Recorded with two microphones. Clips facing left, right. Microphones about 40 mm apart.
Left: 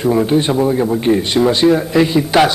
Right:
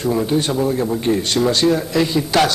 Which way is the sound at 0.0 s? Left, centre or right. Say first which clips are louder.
Left 5 dB; left.